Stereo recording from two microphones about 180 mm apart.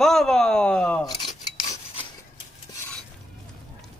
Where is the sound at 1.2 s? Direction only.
30° left (ahead or behind).